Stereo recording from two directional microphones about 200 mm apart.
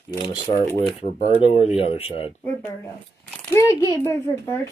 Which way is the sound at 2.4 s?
10° left (ahead or behind).